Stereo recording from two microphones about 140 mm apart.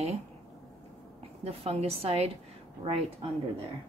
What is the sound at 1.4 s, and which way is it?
Speech, 45° right (ahead or behind).